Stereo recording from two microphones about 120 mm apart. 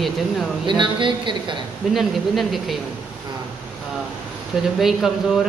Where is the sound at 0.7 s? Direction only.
40° right (ahead or behind).